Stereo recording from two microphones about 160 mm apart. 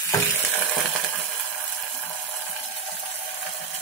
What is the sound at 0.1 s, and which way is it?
Frying, 15° left (ahead or behind).